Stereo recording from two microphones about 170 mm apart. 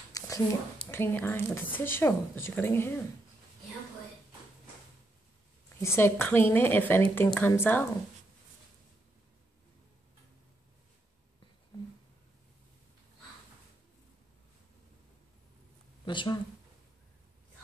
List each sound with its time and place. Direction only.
0.2 s a sound: 20° left (ahead or behind)
0.9 s a woman's voice: 15° left (ahead or behind)
5.8 s a woman's voice: 15° left (ahead or behind)
16.1 s speech: 30° left (ahead or behind)